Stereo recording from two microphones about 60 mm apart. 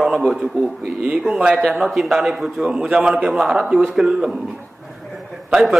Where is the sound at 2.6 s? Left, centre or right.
Centre.